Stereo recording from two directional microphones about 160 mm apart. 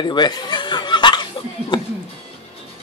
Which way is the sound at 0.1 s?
25° left (ahead or behind).